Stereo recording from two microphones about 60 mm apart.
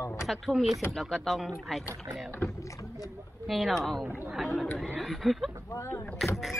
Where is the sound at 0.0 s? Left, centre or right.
Left.